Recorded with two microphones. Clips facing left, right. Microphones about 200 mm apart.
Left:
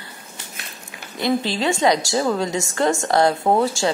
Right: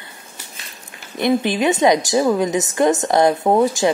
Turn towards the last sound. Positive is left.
turn(degrees=-20)  # may be behind; listen again after turning